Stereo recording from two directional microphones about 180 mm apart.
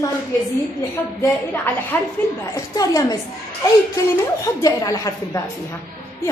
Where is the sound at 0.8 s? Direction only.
15° left (ahead or behind).